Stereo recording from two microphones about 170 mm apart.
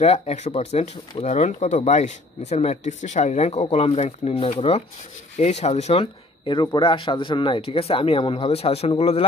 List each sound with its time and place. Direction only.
0.0 s speech: 40° left (ahead or behind)